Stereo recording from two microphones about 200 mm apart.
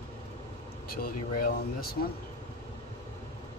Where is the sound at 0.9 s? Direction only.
50° left (ahead or behind).